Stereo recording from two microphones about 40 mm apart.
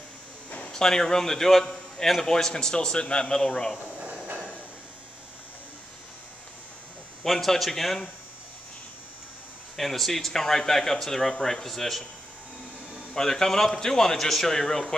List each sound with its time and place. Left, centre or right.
0.7 s a man's voice: centre
4.0 s a sound: right
7.2 s a man's voice: centre
9.8 s a man's voice: centre
13.1 s a man's voice: centre